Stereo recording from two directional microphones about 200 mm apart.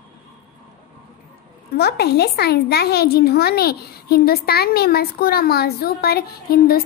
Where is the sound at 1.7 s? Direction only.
50° left (ahead or behind).